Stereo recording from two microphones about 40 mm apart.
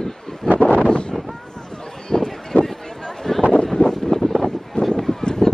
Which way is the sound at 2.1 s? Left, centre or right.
Centre.